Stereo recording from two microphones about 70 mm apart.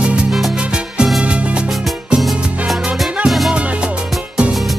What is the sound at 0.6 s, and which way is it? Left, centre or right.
Music, centre.